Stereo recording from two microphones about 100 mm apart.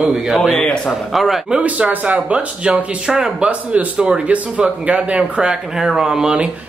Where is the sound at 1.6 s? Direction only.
15° right (ahead or behind).